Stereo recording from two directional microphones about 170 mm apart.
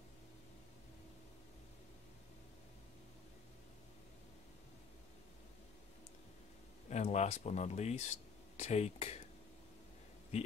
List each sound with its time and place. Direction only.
6.9 s speech: 40° left (ahead or behind)